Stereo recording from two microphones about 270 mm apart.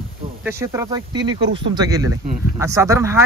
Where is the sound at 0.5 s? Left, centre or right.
Centre.